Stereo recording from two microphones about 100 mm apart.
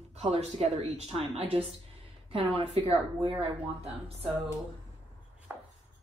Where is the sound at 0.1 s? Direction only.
90° right.